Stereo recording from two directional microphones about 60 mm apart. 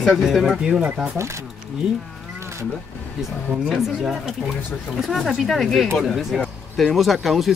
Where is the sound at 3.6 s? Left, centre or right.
Centre.